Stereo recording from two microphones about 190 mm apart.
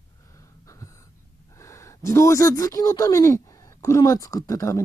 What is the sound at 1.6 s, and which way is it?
Speech, 15° left (ahead or behind).